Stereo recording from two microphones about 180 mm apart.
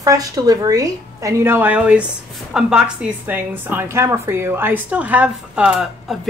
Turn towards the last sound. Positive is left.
turn(degrees=-5)  # may be behind; listen again after turning